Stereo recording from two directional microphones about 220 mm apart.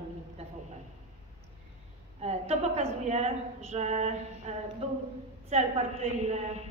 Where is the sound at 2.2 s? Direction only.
30° right (ahead or behind).